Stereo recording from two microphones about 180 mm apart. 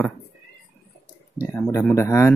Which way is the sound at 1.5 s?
15° left (ahead or behind).